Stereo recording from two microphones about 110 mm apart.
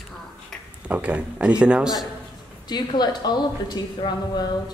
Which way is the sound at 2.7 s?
40° left (ahead or behind).